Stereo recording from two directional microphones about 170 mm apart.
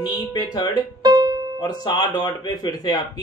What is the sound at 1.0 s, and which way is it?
Music, 25° right (ahead or behind).